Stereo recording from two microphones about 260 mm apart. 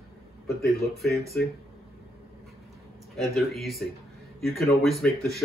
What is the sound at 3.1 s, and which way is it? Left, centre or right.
Speech, centre.